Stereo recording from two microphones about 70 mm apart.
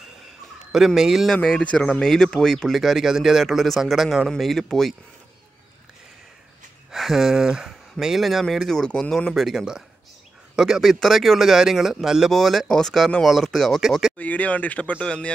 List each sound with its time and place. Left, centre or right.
0.7 s speech: centre
1.3 s speech: centre
2.8 s speech: centre
6.9 s speech: centre
14.1 s speech: left